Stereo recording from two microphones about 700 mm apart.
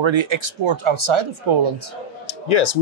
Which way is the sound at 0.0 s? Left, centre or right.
Right.